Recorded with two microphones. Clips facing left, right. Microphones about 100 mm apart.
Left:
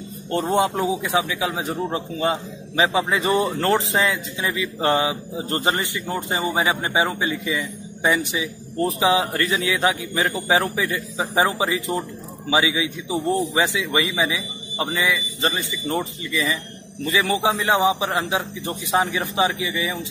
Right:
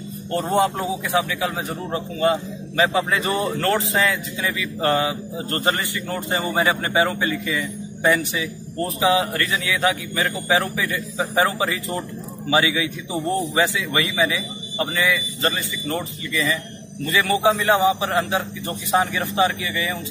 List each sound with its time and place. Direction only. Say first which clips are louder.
0.3 s a man's voice: even; 20° left (ahead or behind)